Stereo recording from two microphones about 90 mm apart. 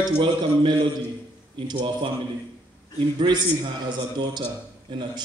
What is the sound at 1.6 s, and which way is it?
A man's voice, 70° right (ahead or behind).